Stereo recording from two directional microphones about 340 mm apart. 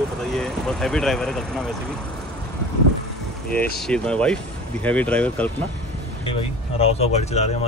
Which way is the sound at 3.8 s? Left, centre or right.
Centre.